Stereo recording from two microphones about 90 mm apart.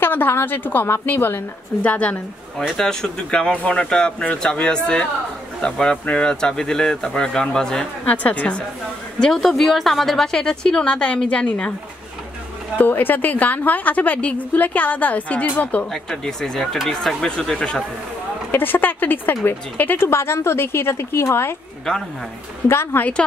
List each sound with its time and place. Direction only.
0.0 s a woman's voice: 25° left (ahead or behind)
12.7 s a woman's voice: 20° left (ahead or behind)
15.9 s speech: 5° left (ahead or behind)
18.5 s a woman's voice: 20° left (ahead or behind)
22.7 s a woman's voice: 25° left (ahead or behind)